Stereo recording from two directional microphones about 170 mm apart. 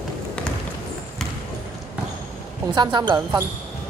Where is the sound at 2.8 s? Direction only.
25° right (ahead or behind).